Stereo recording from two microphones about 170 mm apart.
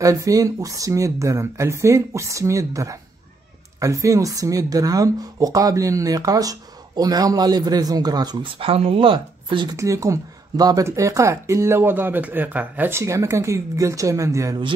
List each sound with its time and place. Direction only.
0.0 s speech: 20° right (ahead or behind)
9.8 s speech: 20° right (ahead or behind)